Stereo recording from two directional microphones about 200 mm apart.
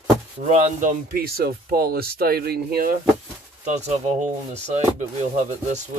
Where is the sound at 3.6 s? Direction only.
35° right (ahead or behind).